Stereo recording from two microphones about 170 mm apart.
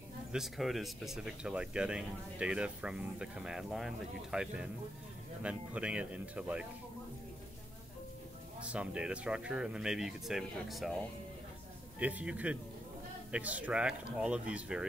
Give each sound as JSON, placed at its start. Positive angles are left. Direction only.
{"t": 0.3, "sound": "speech", "side_deg": 0}
{"t": 8.7, "sound": "speech", "side_deg": -5}
{"t": 12.0, "sound": "speech", "side_deg": -10}